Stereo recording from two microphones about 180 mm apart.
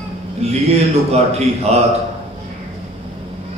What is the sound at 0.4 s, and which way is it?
A man's voice, 35° right (ahead or behind).